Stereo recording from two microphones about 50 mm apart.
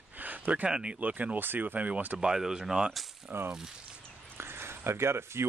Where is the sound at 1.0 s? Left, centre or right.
Right.